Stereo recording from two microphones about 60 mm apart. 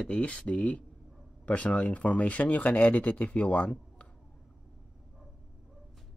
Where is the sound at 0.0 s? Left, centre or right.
Left.